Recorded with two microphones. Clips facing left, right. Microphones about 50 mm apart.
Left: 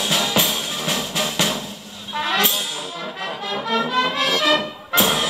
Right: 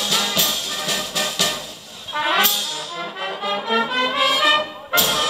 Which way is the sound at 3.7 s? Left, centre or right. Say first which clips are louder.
Left 1 dB; centre.